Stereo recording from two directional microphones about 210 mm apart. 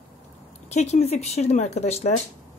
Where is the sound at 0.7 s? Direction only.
30° left (ahead or behind).